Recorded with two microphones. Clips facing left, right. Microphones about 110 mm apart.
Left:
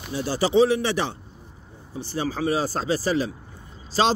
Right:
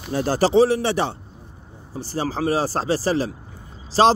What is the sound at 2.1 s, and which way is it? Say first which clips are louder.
A man's voice: right 2 dB; 40° right (ahead or behind).